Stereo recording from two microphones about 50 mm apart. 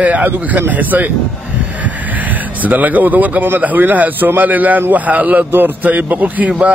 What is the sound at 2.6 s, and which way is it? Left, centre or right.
A man's voice, right.